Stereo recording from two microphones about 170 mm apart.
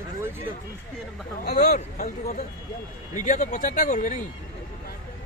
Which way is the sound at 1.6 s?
45° left (ahead or behind).